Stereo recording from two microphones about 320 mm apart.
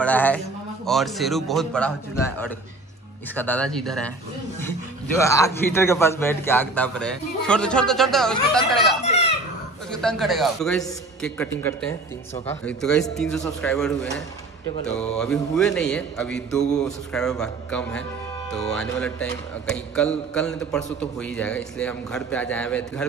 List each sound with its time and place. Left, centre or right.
0.0 s a man's voice: centre
5.1 s a man's voice: centre
9.0 s a sound: centre
9.8 s a man's voice: centre